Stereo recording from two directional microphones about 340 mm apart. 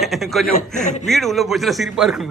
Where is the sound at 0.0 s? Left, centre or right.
Centre.